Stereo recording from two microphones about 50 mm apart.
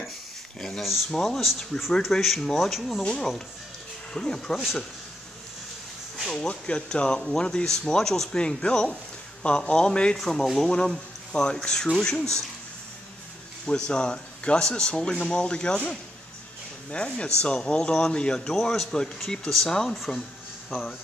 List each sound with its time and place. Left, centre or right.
0.6 s speech: centre
1.0 s speech: centre
1.4 s speech: centre
4.1 s speech: centre
6.3 s speech: centre
10.1 s speech: centre
13.7 s speech: centre